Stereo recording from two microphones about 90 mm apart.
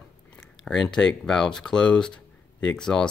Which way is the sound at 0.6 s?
5° left (ahead or behind).